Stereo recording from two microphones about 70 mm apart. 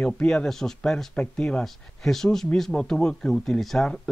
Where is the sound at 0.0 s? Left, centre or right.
Centre.